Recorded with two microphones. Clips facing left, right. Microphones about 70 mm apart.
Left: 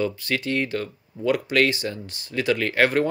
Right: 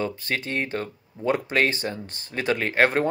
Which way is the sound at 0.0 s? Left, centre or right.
Right.